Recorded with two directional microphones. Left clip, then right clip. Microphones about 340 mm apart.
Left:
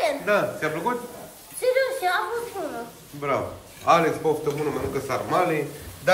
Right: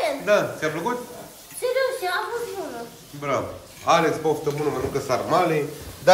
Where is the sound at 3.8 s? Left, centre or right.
Centre.